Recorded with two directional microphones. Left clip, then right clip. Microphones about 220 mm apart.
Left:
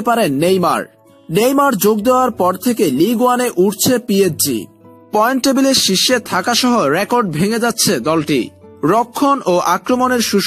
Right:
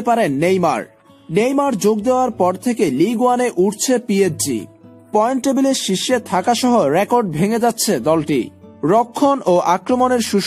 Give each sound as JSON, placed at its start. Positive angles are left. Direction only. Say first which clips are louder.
{"t": 0.0, "sound": "speech", "louder": "left 2 dB", "side_deg": 15}